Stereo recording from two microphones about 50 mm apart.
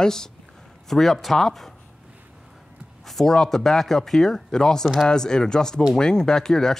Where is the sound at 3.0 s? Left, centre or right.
Centre.